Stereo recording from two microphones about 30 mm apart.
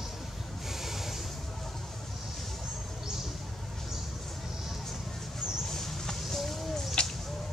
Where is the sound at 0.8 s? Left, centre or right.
Centre.